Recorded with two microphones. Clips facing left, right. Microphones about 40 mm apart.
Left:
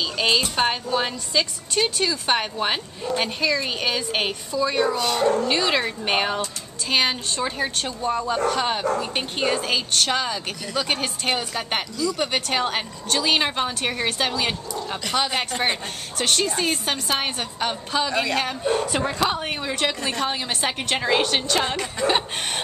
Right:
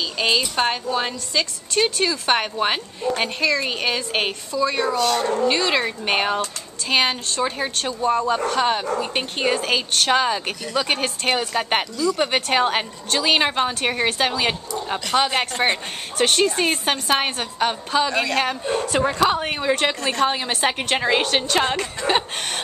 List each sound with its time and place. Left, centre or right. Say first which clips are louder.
0.0 s a woman's voice: even; centre
10.7 s a woman's voice: right 3 dB; centre